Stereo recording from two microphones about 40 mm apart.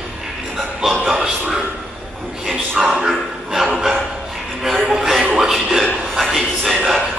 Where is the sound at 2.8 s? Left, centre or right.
Right.